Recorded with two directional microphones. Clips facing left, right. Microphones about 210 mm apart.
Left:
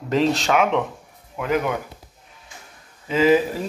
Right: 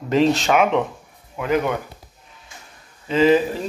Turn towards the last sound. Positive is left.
turn(degrees=5)  # may be behind; listen again after turning